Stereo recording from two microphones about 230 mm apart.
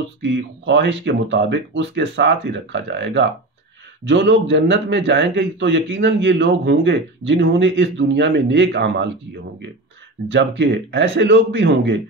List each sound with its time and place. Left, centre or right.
0.2 s a man's voice: right
10.3 s a man's voice: right